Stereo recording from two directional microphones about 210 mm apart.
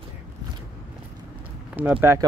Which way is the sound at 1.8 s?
10° right (ahead or behind).